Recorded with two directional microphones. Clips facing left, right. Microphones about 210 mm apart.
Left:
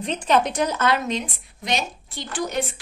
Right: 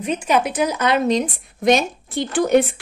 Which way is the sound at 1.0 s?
40° right (ahead or behind).